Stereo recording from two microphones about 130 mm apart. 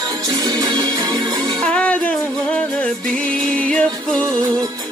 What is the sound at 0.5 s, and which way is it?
Music, 30° right (ahead or behind).